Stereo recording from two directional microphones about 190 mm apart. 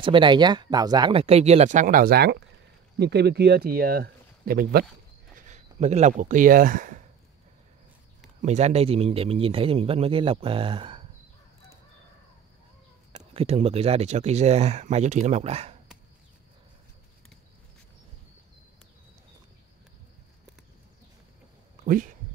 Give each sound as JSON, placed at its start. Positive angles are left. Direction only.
{"t": 0.0, "sound": "a man's voice", "side_deg": -25}
{"t": 5.3, "sound": "speech", "side_deg": -40}
{"t": 8.4, "sound": "a man's voice", "side_deg": -35}
{"t": 13.2, "sound": "speech", "side_deg": -30}
{"t": 21.8, "sound": "speech", "side_deg": -45}